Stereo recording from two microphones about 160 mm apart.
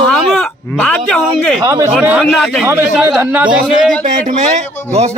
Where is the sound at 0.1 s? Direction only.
5° left (ahead or behind).